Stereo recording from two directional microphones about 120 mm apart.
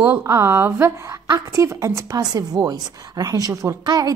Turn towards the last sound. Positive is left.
turn(degrees=-30)  # may be behind; listen again after turning